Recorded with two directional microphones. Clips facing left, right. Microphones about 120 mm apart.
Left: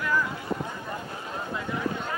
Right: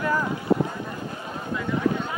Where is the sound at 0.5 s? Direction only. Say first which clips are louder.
Right 11 dB; 55° right (ahead or behind).